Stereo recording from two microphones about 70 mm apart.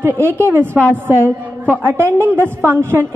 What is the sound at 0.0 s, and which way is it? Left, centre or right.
A woman's voice, right.